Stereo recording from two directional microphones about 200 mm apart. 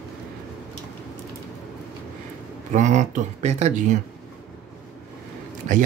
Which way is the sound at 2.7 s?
35° right (ahead or behind).